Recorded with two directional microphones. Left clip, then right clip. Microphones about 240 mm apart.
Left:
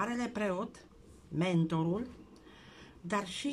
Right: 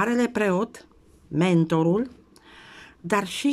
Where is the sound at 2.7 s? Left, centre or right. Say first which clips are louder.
Right 11 dB; right.